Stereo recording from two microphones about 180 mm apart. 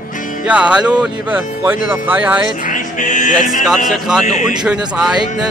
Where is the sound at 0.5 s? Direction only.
5° right (ahead or behind).